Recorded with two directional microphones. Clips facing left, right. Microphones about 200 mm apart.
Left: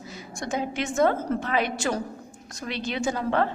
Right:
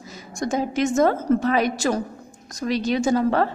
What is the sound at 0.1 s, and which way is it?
A woman's voice, 45° right (ahead or behind).